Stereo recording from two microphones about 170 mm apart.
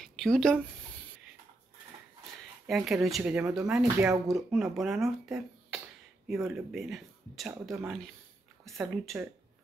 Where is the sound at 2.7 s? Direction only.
Centre (ahead or behind).